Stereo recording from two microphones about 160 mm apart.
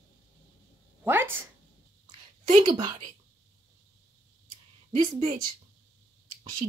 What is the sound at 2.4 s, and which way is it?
Speech, 35° right (ahead or behind).